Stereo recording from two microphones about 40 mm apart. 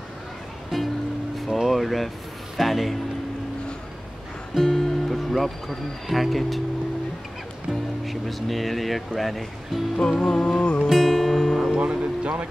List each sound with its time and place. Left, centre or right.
0.7 s music: centre
1.5 s a sound: centre
2.5 s speech: centre
4.6 s speech: centre
8.0 s speech: centre
9.9 s music: centre
10.5 s music: left
10.9 s music: centre
11.7 s speech: right